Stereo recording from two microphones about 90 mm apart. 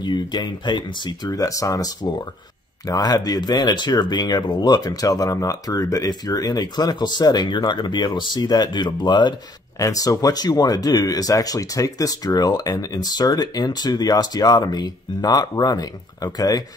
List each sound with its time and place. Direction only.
0.0 s speech: 55° left (ahead or behind)
1.3 s speech: 40° left (ahead or behind); by 9.3 s 60° left (ahead or behind)
9.8 s speech: 40° left (ahead or behind)